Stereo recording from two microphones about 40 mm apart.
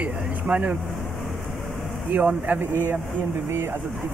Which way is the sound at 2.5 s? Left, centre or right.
Right.